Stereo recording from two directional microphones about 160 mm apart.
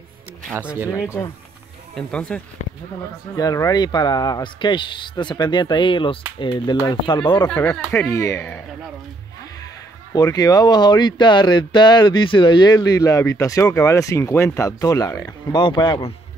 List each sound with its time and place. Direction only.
2.0 s speech: 5° left (ahead or behind)
3.3 s speech: 20° left (ahead or behind)
7.9 s speech: 15° left (ahead or behind)
10.1 s speech: 20° left (ahead or behind)